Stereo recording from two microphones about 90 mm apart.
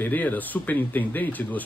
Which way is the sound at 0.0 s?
20° left (ahead or behind).